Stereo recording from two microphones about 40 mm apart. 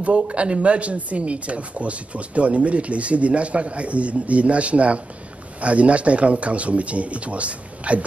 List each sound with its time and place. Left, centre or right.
0.0 s speech: right